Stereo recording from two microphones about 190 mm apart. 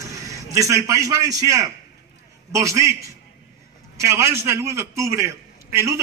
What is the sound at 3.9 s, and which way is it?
A man's voice, 15° right (ahead or behind).